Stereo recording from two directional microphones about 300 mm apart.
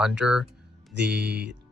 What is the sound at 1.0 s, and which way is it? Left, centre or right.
Speech, right.